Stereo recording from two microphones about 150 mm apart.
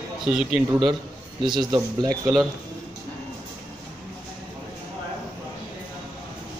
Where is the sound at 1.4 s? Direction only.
30° right (ahead or behind).